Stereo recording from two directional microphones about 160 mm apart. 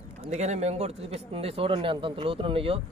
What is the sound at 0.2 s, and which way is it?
Speech, 45° right (ahead or behind).